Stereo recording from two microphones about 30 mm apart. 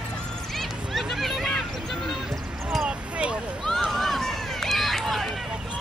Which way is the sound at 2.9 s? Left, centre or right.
Right.